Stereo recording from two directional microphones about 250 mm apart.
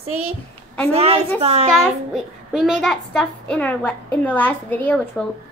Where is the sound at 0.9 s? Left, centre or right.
Right.